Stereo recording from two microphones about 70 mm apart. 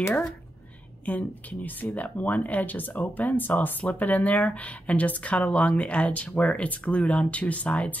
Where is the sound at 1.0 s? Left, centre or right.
Left.